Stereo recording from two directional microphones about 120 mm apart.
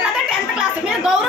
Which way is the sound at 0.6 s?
5° right (ahead or behind).